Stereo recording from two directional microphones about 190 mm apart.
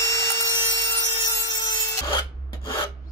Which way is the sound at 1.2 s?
20° left (ahead or behind).